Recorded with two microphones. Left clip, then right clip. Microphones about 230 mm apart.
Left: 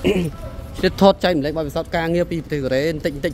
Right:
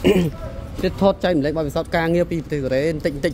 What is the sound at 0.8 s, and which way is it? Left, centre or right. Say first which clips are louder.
Speech: left 4 dB; centre.